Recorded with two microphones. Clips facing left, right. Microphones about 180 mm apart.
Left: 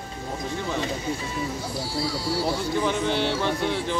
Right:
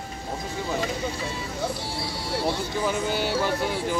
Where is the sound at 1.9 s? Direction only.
25° right (ahead or behind).